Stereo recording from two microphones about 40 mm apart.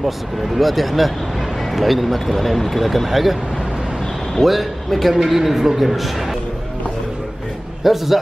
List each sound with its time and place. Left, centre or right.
0.0 s speech: centre
4.4 s speech: centre
7.8 s speech: centre